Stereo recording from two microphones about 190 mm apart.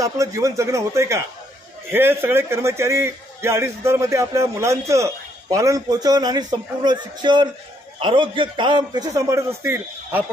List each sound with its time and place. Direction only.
0.0 s a man's voice: 15° right (ahead or behind)